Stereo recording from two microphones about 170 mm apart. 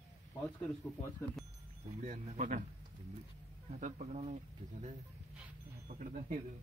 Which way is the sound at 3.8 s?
45° right (ahead or behind).